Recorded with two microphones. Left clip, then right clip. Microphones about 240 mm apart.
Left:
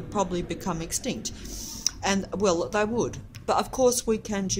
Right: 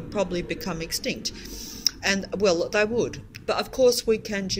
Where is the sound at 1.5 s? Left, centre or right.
Left.